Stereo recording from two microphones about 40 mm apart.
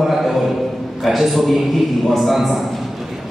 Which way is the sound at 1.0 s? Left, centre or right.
Centre.